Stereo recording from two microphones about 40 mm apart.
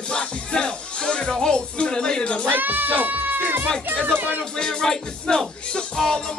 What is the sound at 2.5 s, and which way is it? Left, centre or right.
Speech, right.